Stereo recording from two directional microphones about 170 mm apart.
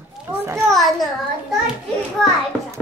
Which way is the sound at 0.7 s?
Centre (ahead or behind).